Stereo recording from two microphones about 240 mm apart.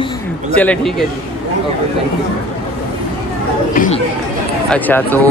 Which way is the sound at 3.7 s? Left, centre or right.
Left.